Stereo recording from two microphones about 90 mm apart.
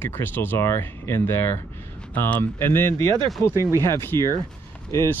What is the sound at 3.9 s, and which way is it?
Speech, 30° left (ahead or behind).